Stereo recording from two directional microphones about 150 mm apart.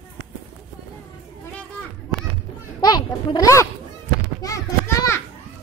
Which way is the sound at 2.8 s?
25° left (ahead or behind).